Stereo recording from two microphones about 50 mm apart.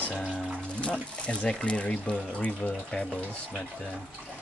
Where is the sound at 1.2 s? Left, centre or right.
Left.